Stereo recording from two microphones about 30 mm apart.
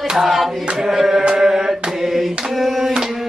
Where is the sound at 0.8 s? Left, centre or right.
Centre.